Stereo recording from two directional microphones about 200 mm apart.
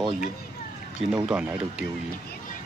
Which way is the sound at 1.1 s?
5° right (ahead or behind).